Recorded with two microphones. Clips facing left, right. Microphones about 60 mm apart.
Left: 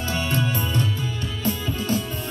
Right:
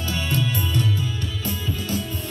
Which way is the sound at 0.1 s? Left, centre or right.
Left.